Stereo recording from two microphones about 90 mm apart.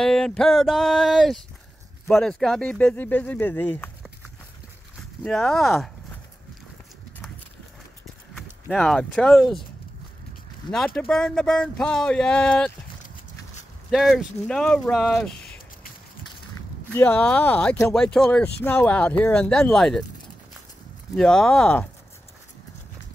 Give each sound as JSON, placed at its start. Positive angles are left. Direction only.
{"t": 0.0, "sound": "speech", "side_deg": 5}
{"t": 5.2, "sound": "speech", "side_deg": 5}
{"t": 8.6, "sound": "speech", "side_deg": 5}
{"t": 10.7, "sound": "speech", "side_deg": 10}
{"t": 13.8, "sound": "speech", "side_deg": 0}
{"t": 16.9, "sound": "speech", "side_deg": 20}
{"t": 18.4, "sound": "speech", "side_deg": 20}
{"t": 21.1, "sound": "speech", "side_deg": 5}